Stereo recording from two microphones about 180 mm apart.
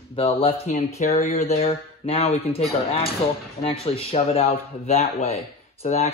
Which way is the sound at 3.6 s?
35° left (ahead or behind).